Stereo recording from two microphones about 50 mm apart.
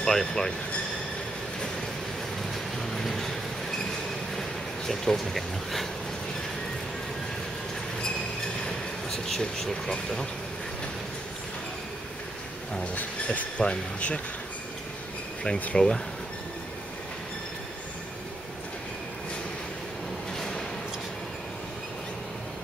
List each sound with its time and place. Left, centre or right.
0.0 s speech: centre
2.9 s vehicle: centre
4.4 s speech: centre
8.6 s speech: centre
12.9 s train: left
13.7 s speech: left
15.8 s speech: centre